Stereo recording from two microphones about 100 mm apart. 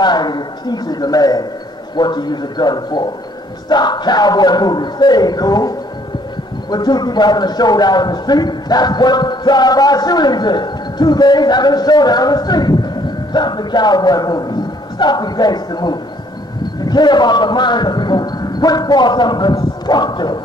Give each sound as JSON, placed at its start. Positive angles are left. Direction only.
{"t": 0.0, "sound": "a man's voice", "side_deg": 45}